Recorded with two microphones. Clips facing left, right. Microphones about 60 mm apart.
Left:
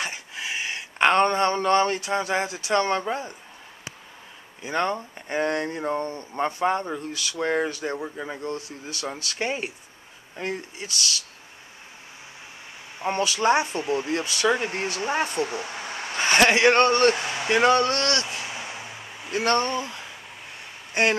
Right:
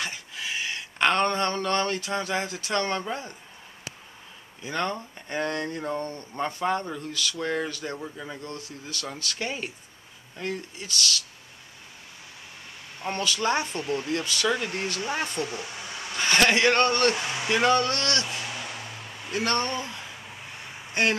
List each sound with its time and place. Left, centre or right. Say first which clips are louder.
0.0 s a sound: left 2 dB; left
2.0 s speech: left 3 dB; left
4.6 s speech: left 4 dB; left
13.0 s speech: left 4 dB; left
15.0 s a sound: left 6 dB; left; by 20.3 s centre
20.9 s speech: left 3 dB; centre